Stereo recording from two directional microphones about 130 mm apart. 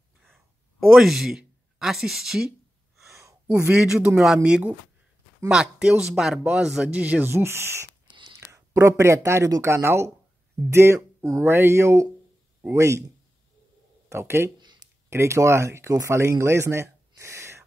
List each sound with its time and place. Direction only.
0.3 s a sound: centre (ahead or behind)
3.1 s a sound: 20° right (ahead or behind)
3.7 s speech: 10° right (ahead or behind)
8.1 s whispering: 35° right (ahead or behind)
8.5 s speech: 25° right (ahead or behind)
14.0 s speech: 20° right (ahead or behind)